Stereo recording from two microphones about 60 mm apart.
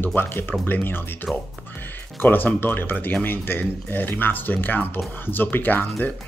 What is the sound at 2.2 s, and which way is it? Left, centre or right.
Speech, left.